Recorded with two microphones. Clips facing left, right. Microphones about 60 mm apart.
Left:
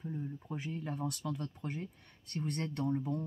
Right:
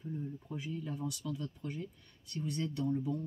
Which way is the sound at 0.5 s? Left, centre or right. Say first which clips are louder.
Left 1 dB; left.